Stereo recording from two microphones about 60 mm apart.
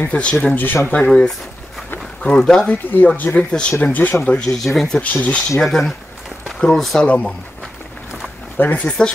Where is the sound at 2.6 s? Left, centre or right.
Left.